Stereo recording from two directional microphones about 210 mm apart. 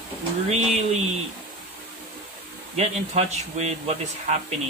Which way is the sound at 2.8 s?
30° right (ahead or behind).